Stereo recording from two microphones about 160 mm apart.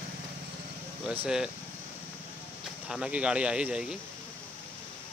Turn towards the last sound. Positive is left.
turn(degrees=-5)  # may be behind; listen again after turning